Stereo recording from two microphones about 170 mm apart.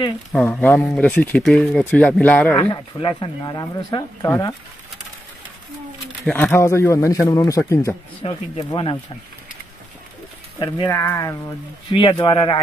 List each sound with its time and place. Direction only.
0.3 s speech: 10° left (ahead or behind)
2.7 s speech: 30° left (ahead or behind)
6.2 s speech: 10° left (ahead or behind)
8.2 s speech: 35° left (ahead or behind)
10.6 s speech: 20° left (ahead or behind)